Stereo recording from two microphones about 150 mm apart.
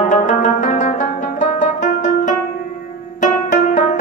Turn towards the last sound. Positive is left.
turn(degrees=55)  # may be behind; listen again after turning